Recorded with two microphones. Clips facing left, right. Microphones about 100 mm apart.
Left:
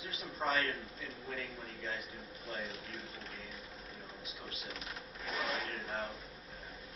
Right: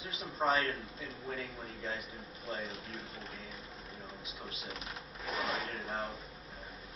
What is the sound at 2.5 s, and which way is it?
Speech, centre (ahead or behind).